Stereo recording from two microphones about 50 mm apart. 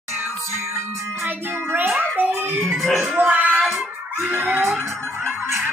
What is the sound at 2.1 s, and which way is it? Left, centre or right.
Music, right.